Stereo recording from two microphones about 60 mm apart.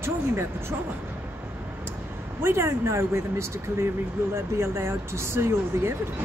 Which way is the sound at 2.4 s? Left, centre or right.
Right.